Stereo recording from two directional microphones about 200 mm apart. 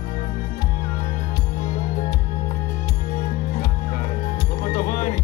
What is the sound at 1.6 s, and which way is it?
Music, 45° left (ahead or behind).